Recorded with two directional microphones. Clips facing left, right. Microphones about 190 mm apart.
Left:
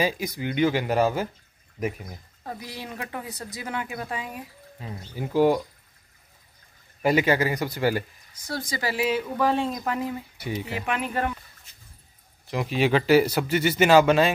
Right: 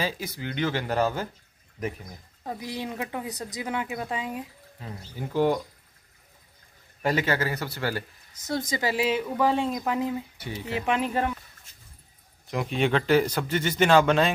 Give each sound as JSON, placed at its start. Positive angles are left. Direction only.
{"t": 0.0, "sound": "speech", "side_deg": 15}
{"t": 2.4, "sound": "speech", "side_deg": -20}
{"t": 4.7, "sound": "speech", "side_deg": 10}
{"t": 7.0, "sound": "speech", "side_deg": 10}
{"t": 8.4, "sound": "speech", "side_deg": -20}
{"t": 10.3, "sound": "speech", "side_deg": 10}
{"t": 10.7, "sound": "speech", "side_deg": -25}
{"t": 12.4, "sound": "speech", "side_deg": 0}